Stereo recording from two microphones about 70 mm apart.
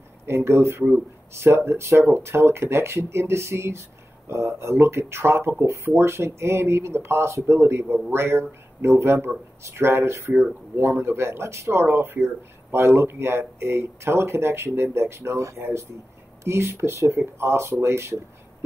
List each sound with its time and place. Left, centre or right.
0.3 s speech: right